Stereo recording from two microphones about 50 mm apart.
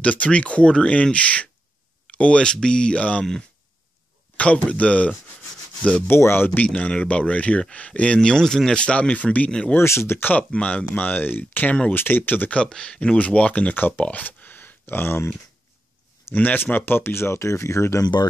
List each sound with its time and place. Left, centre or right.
0.0 s speech: left
4.4 s speech: left
6.0 s speech: left
6.6 s speech: left; by 8.7 s centre
8.7 s speech: left
9.8 s speech: left
10.1 s speech: left
10.5 s speech: left
11.0 s speech: left
12.6 s speech: centre
13.7 s speech: left
16.5 s speech: left